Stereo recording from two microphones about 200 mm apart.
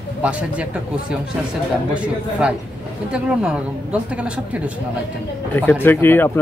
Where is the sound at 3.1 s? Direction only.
5° right (ahead or behind).